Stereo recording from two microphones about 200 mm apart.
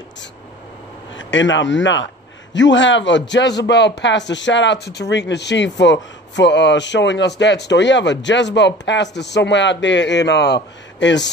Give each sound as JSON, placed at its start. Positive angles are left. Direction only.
{"t": 1.1, "sound": "a man's voice", "side_deg": 65}